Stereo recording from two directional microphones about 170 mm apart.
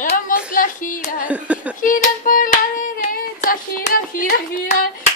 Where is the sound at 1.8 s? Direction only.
50° left (ahead or behind).